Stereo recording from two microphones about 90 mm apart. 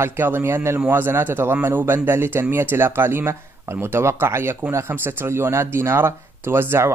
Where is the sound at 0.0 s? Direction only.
25° right (ahead or behind).